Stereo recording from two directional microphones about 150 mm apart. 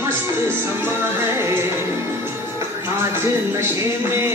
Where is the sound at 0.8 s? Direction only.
15° right (ahead or behind).